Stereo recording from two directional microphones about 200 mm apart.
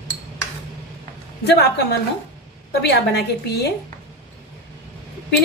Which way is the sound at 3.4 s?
55° left (ahead or behind).